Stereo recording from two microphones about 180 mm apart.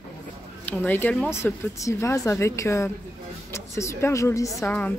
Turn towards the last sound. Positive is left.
turn(degrees=10)  # may be behind; listen again after turning